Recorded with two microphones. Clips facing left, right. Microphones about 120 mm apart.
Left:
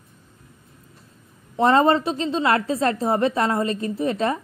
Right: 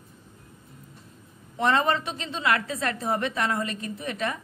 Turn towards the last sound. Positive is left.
turn(degrees=30)  # may be behind; listen again after turning